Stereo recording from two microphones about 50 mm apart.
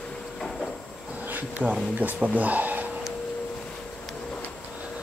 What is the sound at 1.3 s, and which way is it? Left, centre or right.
Bee, right.